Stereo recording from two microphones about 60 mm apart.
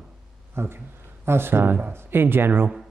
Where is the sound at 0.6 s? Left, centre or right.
Right.